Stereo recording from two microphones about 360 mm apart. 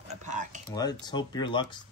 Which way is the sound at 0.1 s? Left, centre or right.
Centre.